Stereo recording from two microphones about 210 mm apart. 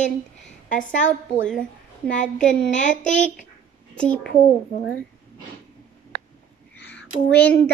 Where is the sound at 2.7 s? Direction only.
35° left (ahead or behind).